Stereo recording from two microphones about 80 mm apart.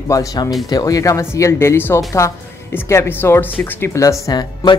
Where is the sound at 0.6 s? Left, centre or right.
Left.